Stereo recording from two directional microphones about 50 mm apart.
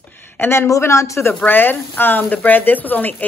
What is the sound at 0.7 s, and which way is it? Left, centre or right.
Speech, left.